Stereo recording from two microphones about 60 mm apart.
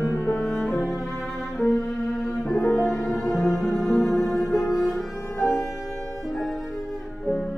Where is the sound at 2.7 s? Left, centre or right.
Centre.